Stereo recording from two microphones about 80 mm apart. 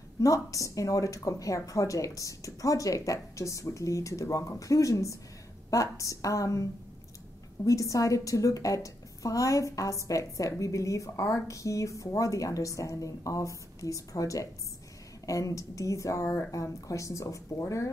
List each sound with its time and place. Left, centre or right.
0.2 s a woman's voice: left